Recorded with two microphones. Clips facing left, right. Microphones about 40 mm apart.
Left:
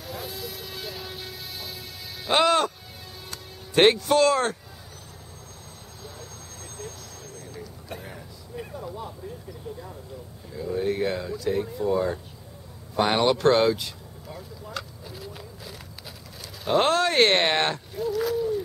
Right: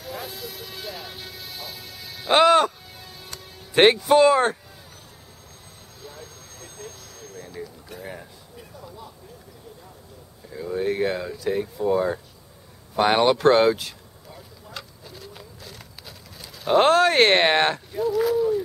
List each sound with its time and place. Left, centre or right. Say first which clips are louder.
0.0 s music: right 1 dB; centre
2.2 s music: right 5 dB; centre
3.7 s speech: right 3 dB; centre
6.0 s vehicle: right 2 dB; centre
8.0 s a sound: right 4 dB; right
10.5 s a sound: right 1 dB; centre
10.9 s speech: right 3 dB; centre
14.7 s vehicle: left 3 dB; centre
16.3 s a sound: right 4 dB; centre
16.8 s speech: right 4 dB; right; by 18.6 s centre